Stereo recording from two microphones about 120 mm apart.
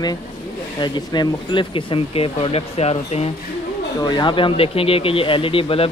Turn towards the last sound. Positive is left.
turn(degrees=50)  # may be behind; listen again after turning